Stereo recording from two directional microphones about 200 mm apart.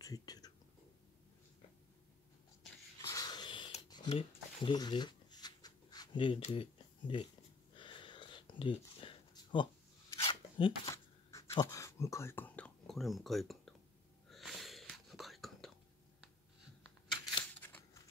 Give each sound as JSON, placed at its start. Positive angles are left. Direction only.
{"t": 0.0, "sound": "whispering", "side_deg": 20}
{"t": 3.0, "sound": "a sound", "side_deg": 15}
{"t": 14.3, "sound": "whispering", "side_deg": 0}
{"t": 17.6, "sound": "scissors", "side_deg": 10}